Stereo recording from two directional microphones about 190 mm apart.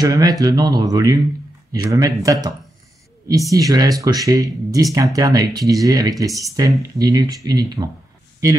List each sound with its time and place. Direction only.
0.0 s speech: 20° right (ahead or behind)
3.3 s speech: 15° right (ahead or behind)